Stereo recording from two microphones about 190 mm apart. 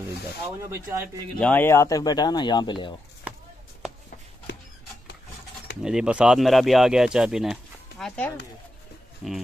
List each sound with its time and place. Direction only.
0.6 s speech: 15° right (ahead or behind)
1.4 s speech: 10° left (ahead or behind)
5.8 s speech: 5° right (ahead or behind)